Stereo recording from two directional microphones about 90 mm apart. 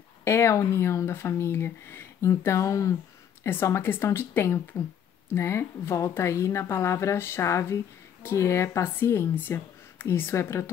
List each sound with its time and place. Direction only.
0.2 s a woman's voice: 30° left (ahead or behind)